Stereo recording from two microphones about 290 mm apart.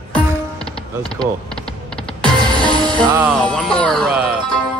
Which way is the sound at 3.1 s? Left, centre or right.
Centre.